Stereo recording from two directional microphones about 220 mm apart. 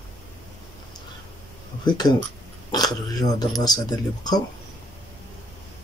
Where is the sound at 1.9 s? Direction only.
20° left (ahead or behind).